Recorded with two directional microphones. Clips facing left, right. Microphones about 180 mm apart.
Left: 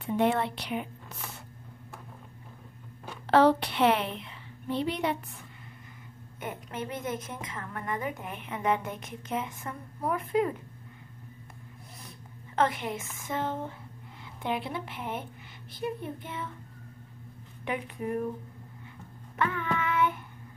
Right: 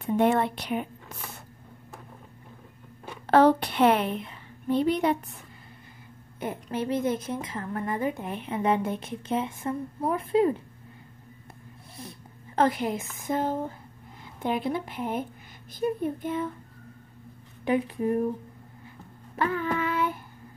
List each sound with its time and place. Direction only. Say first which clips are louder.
0.0 s speech: right 4 dB; 45° right (ahead or behind)
3.3 s a woman's voice: right 2 dB; 50° right (ahead or behind)
6.4 s a woman's voice: right 6 dB; 30° right (ahead or behind)
12.5 s a woman's voice: right 4 dB; 35° right (ahead or behind)
17.6 s a woman's voice: right 7 dB; 35° right (ahead or behind)
19.3 s child singing: right 3 dB; 35° right (ahead or behind)